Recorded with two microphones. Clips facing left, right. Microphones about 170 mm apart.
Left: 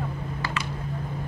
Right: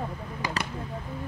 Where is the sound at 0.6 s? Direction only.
40° right (ahead or behind).